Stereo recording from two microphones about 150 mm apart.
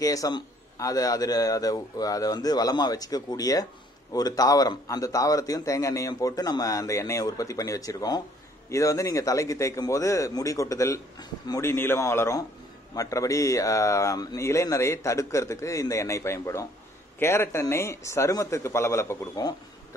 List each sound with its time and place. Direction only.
0.0 s a man's voice: 25° left (ahead or behind)